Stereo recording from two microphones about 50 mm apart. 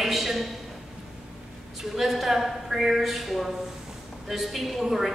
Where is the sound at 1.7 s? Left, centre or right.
Centre.